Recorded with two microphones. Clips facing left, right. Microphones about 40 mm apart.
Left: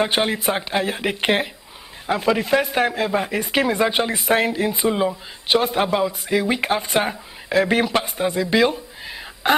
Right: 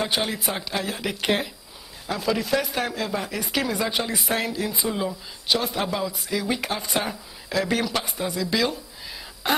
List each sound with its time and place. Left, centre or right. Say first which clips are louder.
0.0 s speech: left 6 dB; left